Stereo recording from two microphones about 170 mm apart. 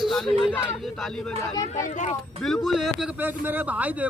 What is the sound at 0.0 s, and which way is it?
Speech, centre (ahead or behind).